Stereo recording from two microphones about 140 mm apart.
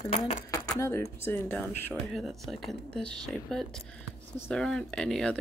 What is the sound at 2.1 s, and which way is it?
Speech, centre (ahead or behind).